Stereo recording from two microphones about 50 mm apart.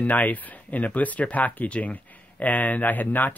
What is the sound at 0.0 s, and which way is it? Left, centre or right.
Speech, left.